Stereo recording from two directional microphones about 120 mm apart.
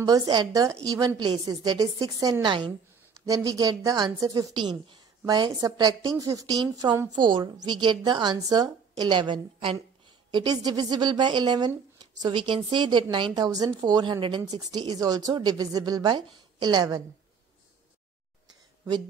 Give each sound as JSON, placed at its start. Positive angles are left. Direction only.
{"t": 0.0, "sound": "a woman's voice", "side_deg": -35}
{"t": 1.1, "sound": "a woman's voice", "side_deg": -40}
{"t": 3.3, "sound": "a woman's voice", "side_deg": -30}
{"t": 10.3, "sound": "a woman's voice", "side_deg": -35}